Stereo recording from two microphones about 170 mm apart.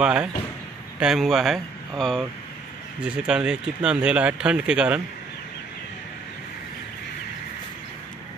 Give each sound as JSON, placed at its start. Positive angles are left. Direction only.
{"t": 0.0, "sound": "speech", "side_deg": -5}